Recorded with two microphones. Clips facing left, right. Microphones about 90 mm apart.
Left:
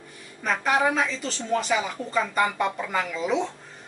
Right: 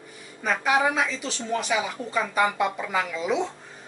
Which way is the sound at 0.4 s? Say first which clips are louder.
Even; centre (ahead or behind).